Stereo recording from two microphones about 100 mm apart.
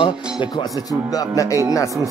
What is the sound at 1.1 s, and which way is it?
Speech, 35° left (ahead or behind).